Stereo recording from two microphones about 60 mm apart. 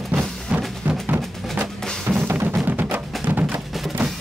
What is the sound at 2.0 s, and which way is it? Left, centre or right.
Music, right.